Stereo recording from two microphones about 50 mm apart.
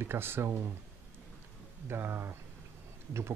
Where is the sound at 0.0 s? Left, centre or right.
Right.